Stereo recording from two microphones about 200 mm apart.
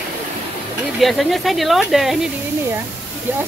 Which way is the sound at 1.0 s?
Centre (ahead or behind).